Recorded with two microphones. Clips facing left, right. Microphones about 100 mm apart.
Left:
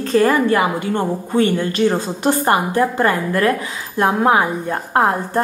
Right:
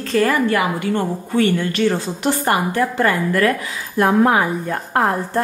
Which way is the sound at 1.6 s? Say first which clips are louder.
Left 1 dB; 35° left (ahead or behind).